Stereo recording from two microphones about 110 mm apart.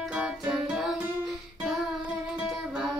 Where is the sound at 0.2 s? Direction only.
10° right (ahead or behind).